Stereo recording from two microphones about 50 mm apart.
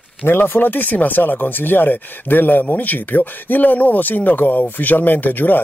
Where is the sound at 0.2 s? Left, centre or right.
Left.